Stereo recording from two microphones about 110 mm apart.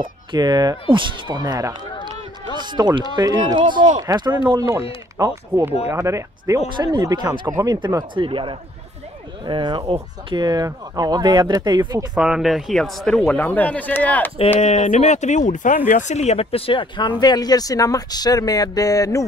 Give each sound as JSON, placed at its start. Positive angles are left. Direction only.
{"t": 0.3, "sound": "speech", "side_deg": -40}
{"t": 5.2, "sound": "speech", "side_deg": -25}
{"t": 6.7, "sound": "speech", "side_deg": -40}
{"t": 8.1, "sound": "speech", "side_deg": -50}
{"t": 12.2, "sound": "speech", "side_deg": -5}
{"t": 14.6, "sound": "speech", "side_deg": 90}
{"t": 17.2, "sound": "speech", "side_deg": 40}